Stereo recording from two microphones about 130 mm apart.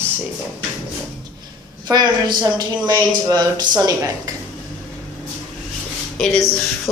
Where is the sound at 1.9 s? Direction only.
30° right (ahead or behind).